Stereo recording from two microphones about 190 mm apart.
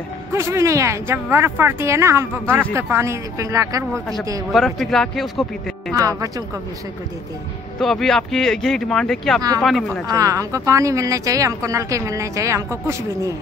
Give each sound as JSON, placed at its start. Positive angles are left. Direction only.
{"t": 0.3, "sound": "speech", "side_deg": -15}
{"t": 4.5, "sound": "speech", "side_deg": 0}
{"t": 5.9, "sound": "speech", "side_deg": -20}
{"t": 7.8, "sound": "speech", "side_deg": 0}
{"t": 10.0, "sound": "speech", "side_deg": -15}